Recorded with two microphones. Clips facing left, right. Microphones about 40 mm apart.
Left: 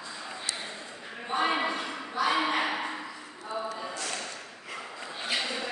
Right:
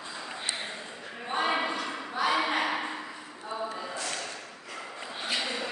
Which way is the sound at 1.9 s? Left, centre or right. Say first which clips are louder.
Even; centre.